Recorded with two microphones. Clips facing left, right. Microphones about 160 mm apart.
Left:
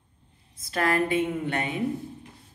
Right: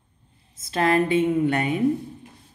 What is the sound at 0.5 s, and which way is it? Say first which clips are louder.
Speech: right 4 dB; 20° right (ahead or behind).